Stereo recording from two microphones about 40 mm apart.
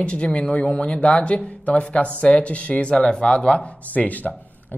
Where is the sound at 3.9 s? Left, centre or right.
Left.